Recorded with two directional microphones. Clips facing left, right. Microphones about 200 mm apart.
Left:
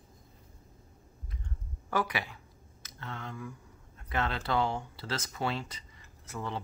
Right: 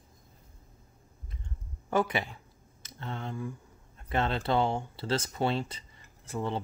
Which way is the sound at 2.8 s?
25° right (ahead or behind).